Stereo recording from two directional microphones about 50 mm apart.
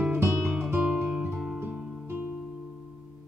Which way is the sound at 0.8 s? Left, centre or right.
Centre.